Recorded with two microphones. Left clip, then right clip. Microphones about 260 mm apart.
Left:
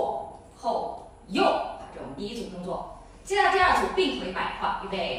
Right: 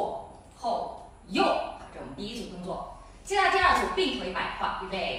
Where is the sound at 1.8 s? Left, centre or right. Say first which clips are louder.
Left 3 dB; centre.